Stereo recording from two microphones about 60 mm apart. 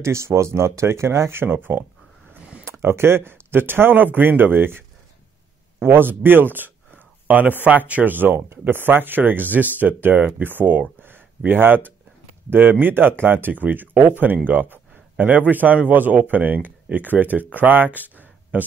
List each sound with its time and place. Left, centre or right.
0.0 s speech: right
2.6 s speech: right
11.0 s a sound: right
12.4 s speech: right